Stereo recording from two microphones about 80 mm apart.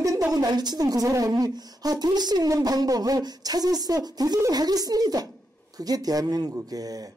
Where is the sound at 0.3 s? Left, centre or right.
Right.